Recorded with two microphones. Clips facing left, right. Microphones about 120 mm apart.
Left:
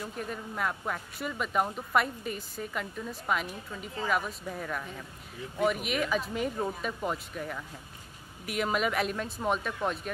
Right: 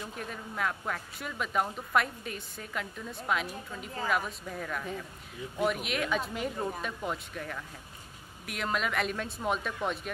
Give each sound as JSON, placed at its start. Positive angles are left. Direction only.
{"t": 0.0, "sound": "speech", "side_deg": 5}